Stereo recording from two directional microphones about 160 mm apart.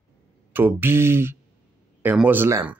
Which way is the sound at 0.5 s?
15° right (ahead or behind).